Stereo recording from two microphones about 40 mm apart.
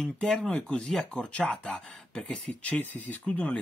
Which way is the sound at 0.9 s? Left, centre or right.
Left.